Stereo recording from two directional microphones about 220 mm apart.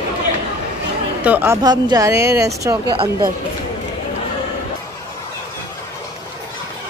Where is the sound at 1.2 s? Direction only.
10° right (ahead or behind).